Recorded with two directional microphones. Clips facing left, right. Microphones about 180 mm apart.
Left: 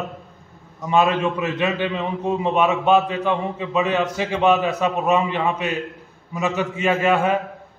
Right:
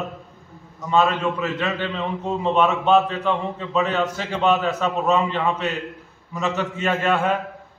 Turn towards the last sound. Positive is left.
turn(degrees=10)  # may be behind; listen again after turning